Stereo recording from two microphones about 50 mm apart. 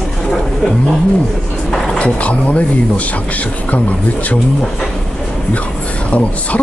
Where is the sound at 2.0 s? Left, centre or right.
Left.